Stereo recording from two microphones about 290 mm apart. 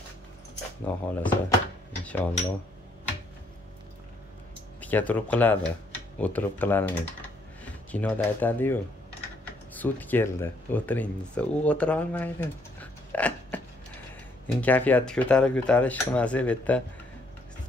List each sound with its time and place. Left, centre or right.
0.8 s speech: centre
4.7 s speech: centre
14.6 s speech: centre